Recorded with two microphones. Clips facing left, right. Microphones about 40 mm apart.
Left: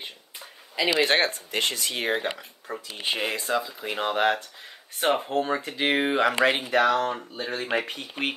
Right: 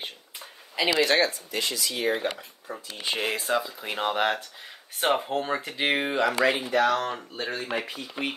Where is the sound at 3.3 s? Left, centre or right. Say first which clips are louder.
Even; centre.